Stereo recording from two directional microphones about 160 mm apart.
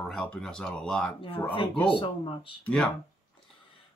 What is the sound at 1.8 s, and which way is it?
Speech, 35° left (ahead or behind).